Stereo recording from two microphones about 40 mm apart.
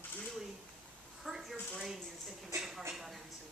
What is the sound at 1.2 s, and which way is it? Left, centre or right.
A woman's voice, centre.